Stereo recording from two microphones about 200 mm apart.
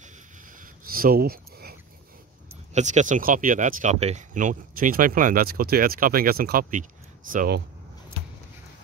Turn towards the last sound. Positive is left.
turn(degrees=-45)  # may be behind; listen again after turning